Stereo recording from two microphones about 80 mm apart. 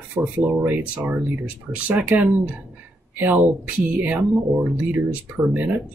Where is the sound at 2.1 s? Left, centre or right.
Centre.